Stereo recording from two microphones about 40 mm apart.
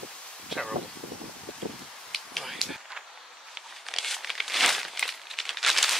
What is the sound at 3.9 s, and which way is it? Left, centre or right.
Crumpling, centre.